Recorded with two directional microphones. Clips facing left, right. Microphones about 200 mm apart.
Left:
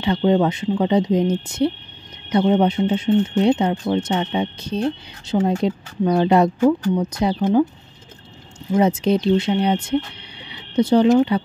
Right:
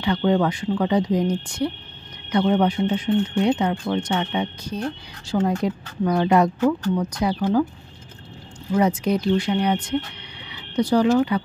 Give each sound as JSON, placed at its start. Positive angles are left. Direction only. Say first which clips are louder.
{"t": 0.0, "sound": "speech", "louder": "left 3 dB", "side_deg": 25}
{"t": 6.6, "sound": "speech", "louder": "left 3 dB", "side_deg": 10}
{"t": 7.1, "sound": "speech", "louder": "left 3 dB", "side_deg": 25}
{"t": 8.7, "sound": "speech", "louder": "left 3 dB", "side_deg": 25}